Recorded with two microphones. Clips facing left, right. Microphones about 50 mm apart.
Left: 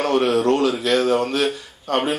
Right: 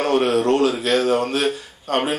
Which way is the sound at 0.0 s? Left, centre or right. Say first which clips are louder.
Even; centre.